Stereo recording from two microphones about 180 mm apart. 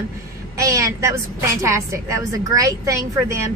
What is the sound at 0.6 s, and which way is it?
A woman's voice, 20° right (ahead or behind).